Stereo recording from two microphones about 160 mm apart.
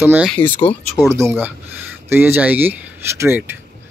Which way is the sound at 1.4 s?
10° right (ahead or behind).